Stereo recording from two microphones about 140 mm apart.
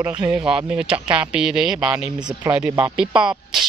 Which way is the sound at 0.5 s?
5° right (ahead or behind).